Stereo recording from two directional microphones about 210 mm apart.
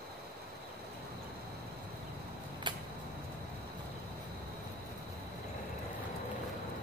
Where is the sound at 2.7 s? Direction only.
20° right (ahead or behind).